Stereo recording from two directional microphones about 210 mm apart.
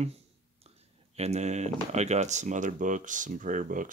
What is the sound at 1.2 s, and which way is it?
Speech, 30° right (ahead or behind).